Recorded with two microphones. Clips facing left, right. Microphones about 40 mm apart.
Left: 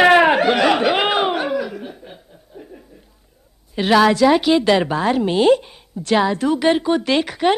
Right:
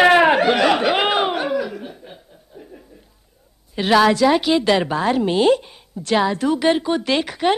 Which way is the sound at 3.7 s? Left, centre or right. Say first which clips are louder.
Left 1 dB; centre.